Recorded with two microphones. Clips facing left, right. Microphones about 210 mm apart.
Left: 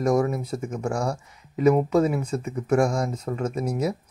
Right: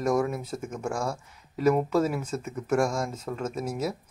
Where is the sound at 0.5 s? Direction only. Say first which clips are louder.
Left 4 dB; centre (ahead or behind).